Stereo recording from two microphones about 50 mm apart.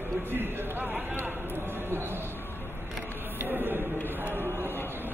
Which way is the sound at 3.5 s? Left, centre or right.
Right.